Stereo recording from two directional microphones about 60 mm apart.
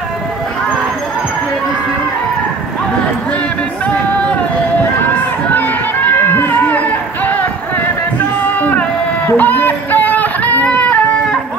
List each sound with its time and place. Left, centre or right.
3.8 s music: left
5.0 s run: left
8.5 s music: left
9.3 s a sound: left